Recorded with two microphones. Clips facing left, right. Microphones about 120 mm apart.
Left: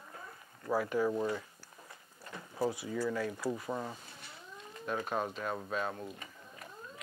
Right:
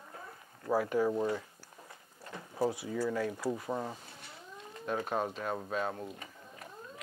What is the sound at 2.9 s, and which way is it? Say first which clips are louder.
Speech: right 1 dB; 35° right (ahead or behind).